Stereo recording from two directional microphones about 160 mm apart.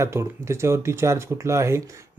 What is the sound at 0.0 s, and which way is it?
A man's voice, 15° right (ahead or behind).